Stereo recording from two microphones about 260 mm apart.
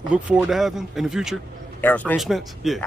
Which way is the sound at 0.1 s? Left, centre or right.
Centre.